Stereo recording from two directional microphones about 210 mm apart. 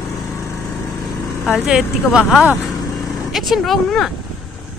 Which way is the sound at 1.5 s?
5° right (ahead or behind).